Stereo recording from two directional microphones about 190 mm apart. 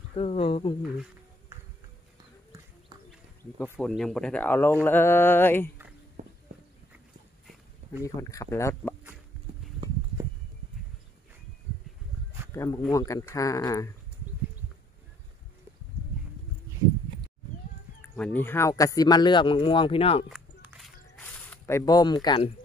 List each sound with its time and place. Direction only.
0.1 s speech: 30° left (ahead or behind)
3.8 s speech: 5° left (ahead or behind)
6.2 s walk: 45° right (ahead or behind)
8.0 s speech: 15° left (ahead or behind)
12.5 s speech: 15° left (ahead or behind)
18.1 s speech: 10° left (ahead or behind); by 20.2 s 30° left (ahead or behind)
20.2 s a sound: 5° right (ahead or behind)
21.5 s speech: 15° left (ahead or behind)